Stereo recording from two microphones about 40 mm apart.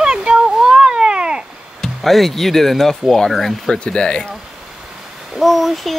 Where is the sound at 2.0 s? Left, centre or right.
Centre.